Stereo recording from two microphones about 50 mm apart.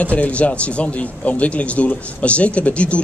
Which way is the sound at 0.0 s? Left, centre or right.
Left.